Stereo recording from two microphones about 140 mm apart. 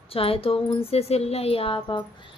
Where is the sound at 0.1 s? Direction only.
40° left (ahead or behind).